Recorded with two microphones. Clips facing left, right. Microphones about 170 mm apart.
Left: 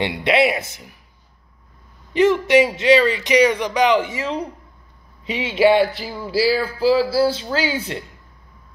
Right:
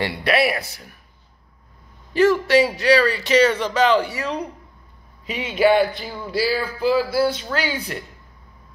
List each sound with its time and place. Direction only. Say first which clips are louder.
0.0 s a man's voice: left 2 dB; 20° left (ahead or behind)
2.1 s a man's voice: left 1 dB; 20° left (ahead or behind)